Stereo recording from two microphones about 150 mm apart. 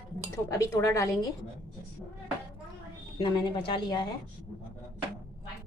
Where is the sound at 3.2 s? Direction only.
30° left (ahead or behind).